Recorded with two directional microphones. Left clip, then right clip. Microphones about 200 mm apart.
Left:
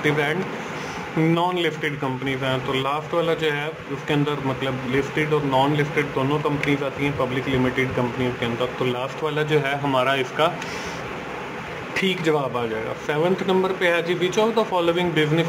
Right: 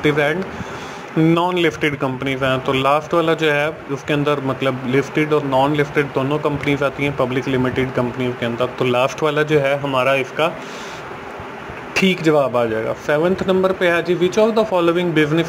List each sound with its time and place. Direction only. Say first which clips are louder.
0.0 s speech: right 5 dB; 25° right (ahead or behind)
8.4 s speech: right 4 dB; 30° right (ahead or behind)
11.9 s speech: right 6 dB; 30° right (ahead or behind)